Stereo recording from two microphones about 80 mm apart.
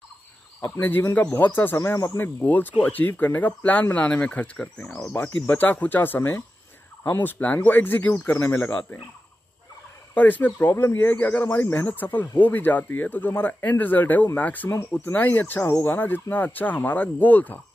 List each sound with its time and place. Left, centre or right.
0.6 s speech: left
1.8 s speech: left
2.1 s speech: left
5.0 s speech: left
10.1 s speech: left